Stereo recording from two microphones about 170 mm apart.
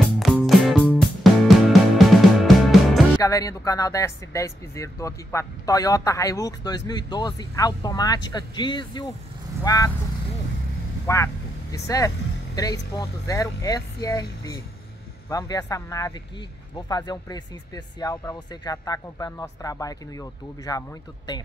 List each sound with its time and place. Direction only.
0.2 s music: centre (ahead or behind)
3.2 s speech: 20° left (ahead or behind)
11.1 s speech: 15° left (ahead or behind)
18.1 s speech: 10° left (ahead or behind)
18.5 s speech: 25° left (ahead or behind)